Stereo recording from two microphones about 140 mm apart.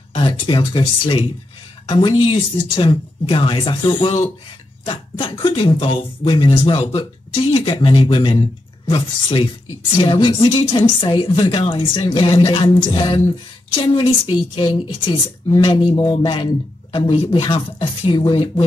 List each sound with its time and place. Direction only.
0.1 s a woman's voice: 40° left (ahead or behind)